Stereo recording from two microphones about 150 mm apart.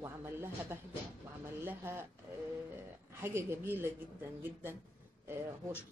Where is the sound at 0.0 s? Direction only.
15° right (ahead or behind).